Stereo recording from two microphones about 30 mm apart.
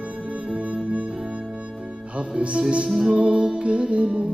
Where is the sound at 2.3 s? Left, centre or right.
Right.